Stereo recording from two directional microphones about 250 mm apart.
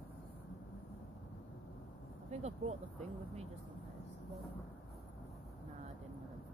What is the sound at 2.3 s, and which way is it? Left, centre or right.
Speech, right.